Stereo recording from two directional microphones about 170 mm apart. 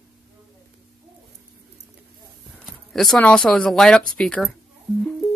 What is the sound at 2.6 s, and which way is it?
Speech, centre (ahead or behind).